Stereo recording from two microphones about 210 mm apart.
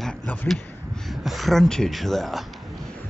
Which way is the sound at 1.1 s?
Centre (ahead or behind).